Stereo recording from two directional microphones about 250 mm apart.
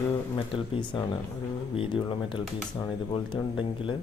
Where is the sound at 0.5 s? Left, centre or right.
Left.